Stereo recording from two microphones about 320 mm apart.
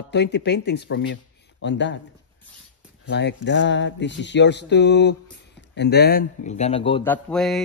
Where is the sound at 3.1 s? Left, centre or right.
Left.